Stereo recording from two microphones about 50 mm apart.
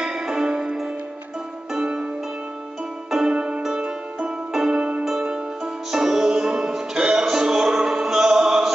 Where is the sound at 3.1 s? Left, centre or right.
Centre.